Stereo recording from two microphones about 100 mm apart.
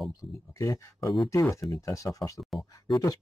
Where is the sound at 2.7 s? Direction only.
40° left (ahead or behind).